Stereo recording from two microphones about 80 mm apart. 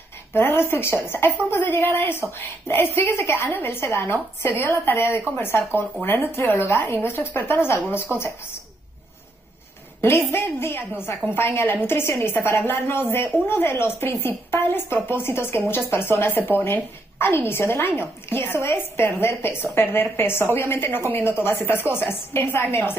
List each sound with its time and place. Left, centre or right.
0.3 s a child's voice: left
10.0 s a woman's voice: left